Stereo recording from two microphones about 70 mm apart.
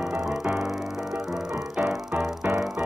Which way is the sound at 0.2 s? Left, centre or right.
Centre.